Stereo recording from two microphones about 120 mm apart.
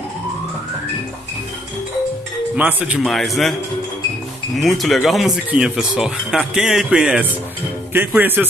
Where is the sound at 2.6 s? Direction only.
10° right (ahead or behind).